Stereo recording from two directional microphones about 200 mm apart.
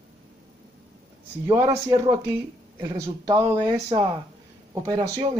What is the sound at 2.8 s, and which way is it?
Speech, 20° right (ahead or behind).